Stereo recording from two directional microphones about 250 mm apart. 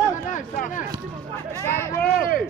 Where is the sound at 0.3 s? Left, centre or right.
Left.